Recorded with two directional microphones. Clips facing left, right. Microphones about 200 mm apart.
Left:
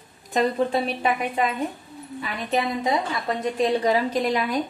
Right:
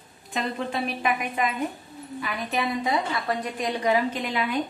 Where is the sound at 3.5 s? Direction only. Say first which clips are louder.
Left 4 dB; 30° left (ahead or behind).